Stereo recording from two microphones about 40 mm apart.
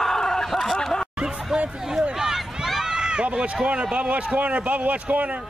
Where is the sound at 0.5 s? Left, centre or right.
Centre.